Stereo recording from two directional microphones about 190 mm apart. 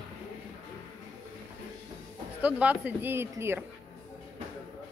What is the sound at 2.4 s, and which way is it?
Speech, 10° right (ahead or behind).